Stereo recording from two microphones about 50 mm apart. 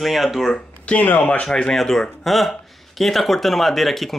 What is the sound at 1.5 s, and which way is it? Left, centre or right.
Speech, centre.